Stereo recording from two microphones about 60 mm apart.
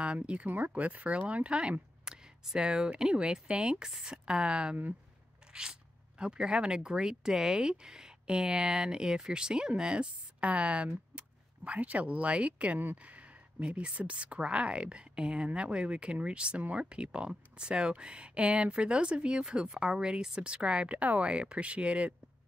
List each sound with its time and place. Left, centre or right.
0.0 s speech: centre